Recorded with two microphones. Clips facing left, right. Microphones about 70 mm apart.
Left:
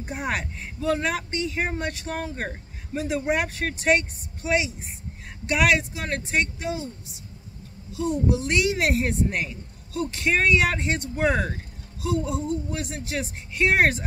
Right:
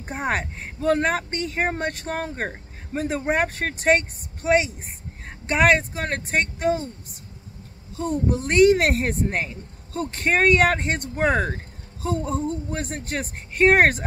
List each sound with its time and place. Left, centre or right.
0.0 s speech: right